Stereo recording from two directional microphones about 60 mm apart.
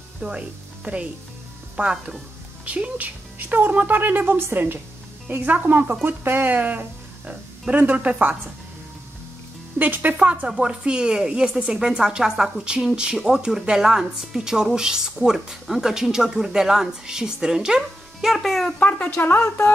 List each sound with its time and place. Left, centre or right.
0.2 s a woman's voice: centre
2.6 s speech: right
5.3 s a woman's voice: right
9.8 s a woman's voice: right
10.5 s a woman's voice: centre
18.8 s speech: left
19.2 s speech: left